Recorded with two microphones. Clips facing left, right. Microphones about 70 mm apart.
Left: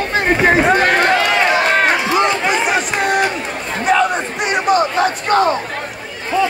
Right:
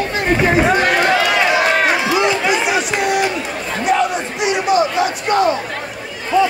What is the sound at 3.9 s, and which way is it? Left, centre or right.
Crowd, left.